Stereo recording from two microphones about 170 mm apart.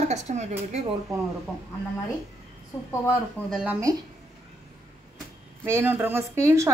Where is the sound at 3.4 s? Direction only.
10° left (ahead or behind).